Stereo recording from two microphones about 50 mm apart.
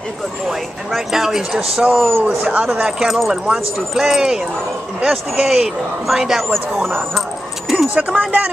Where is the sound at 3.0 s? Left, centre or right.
Centre.